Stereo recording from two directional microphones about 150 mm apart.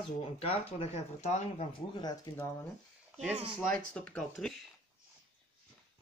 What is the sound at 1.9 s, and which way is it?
Speech, 30° left (ahead or behind).